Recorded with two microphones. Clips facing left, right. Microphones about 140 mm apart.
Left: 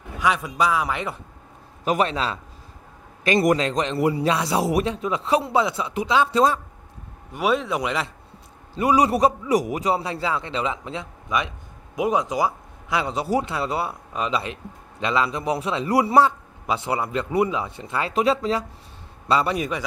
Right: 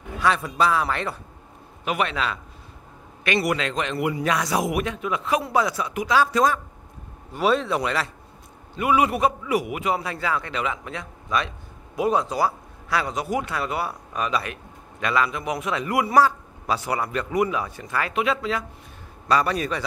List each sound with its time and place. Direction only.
0.2 s a man's voice: 15° left (ahead or behind)
1.9 s a man's voice: 35° left (ahead or behind)
7.3 s a man's voice: 10° left (ahead or behind)
8.7 s a man's voice: 35° left (ahead or behind)
19.2 s a man's voice: 25° left (ahead or behind)